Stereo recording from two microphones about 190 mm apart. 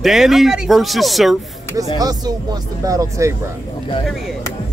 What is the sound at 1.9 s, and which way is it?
Speech, 20° right (ahead or behind).